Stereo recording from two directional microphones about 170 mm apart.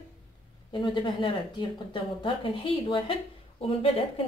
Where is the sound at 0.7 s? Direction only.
30° left (ahead or behind).